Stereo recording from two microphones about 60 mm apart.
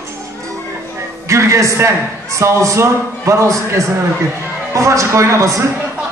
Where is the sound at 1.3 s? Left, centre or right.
Right.